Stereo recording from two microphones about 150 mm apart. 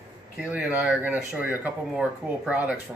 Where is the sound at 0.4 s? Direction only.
10° right (ahead or behind).